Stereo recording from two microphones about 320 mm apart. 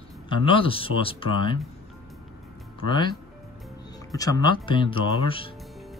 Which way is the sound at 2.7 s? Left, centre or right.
Centre.